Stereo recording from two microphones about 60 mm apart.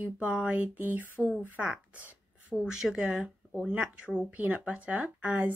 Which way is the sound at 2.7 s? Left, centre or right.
Centre.